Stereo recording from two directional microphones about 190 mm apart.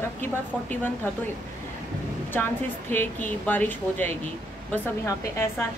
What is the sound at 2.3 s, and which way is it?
Speech, 10° left (ahead or behind).